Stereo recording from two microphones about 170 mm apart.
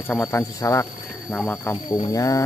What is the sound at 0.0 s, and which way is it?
Speech, 15° left (ahead or behind).